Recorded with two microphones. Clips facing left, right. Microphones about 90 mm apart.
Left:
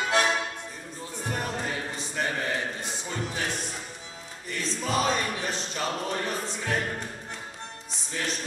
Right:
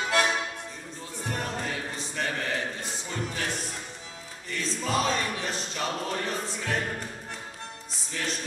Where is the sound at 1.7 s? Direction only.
20° left (ahead or behind).